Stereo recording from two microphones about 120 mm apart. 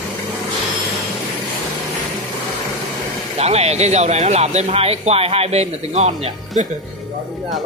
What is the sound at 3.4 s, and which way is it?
Speech, 60° right (ahead or behind).